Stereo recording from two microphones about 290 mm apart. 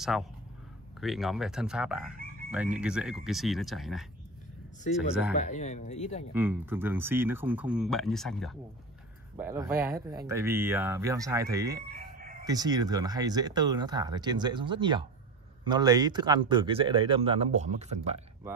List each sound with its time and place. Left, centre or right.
0.1 s speech: centre
5.3 s speech: left
6.3 s speech: centre
11.9 s crowing: right
12.4 s speech: centre